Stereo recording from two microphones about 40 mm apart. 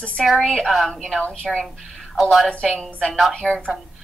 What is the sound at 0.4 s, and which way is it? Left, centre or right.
Speech, centre.